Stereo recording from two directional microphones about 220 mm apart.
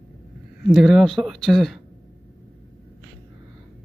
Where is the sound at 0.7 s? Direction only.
Centre (ahead or behind).